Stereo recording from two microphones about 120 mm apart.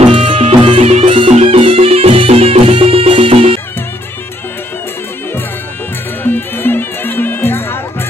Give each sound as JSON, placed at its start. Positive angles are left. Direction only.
{"t": 0.0, "sound": "music", "side_deg": -50}
{"t": 6.2, "sound": "music", "side_deg": 15}